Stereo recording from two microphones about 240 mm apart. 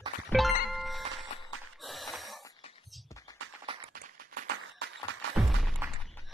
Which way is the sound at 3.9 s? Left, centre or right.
Right.